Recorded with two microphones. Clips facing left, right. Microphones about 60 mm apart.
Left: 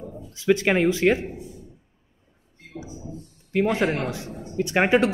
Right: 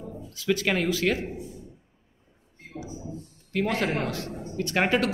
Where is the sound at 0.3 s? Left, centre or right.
Left.